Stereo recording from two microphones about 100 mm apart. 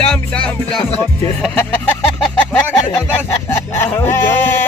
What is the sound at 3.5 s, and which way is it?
Speech, 20° left (ahead or behind).